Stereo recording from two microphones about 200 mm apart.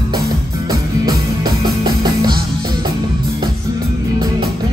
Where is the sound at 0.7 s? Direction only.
20° right (ahead or behind).